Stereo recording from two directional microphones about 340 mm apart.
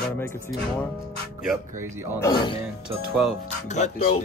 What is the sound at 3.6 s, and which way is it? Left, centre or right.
Speech, centre.